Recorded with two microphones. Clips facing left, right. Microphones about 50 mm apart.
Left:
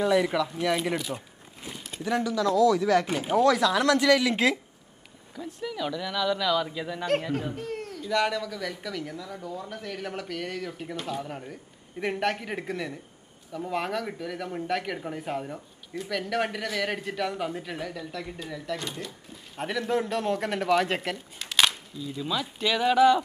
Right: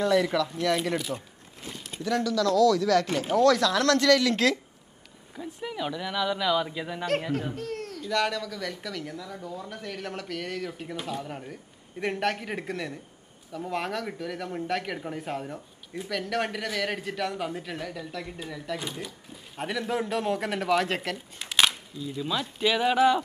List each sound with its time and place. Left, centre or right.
0.0 s speech: centre
0.9 s speech: centre
1.6 s a sound: centre
2.0 s speech: left
5.3 s speech: centre
7.5 s speech: centre
21.4 s speech: centre